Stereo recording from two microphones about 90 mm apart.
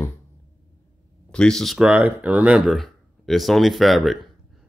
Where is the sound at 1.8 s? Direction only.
15° right (ahead or behind).